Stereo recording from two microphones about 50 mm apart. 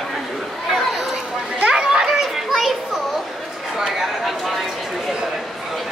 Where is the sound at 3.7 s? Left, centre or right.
Centre.